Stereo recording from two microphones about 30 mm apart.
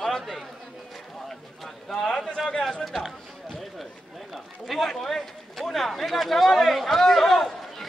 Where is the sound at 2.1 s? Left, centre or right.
Centre.